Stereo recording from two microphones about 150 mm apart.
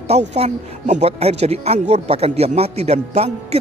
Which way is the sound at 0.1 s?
50° right (ahead or behind).